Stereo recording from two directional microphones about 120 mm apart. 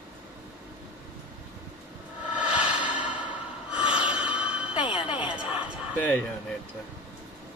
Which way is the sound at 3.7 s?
45° left (ahead or behind).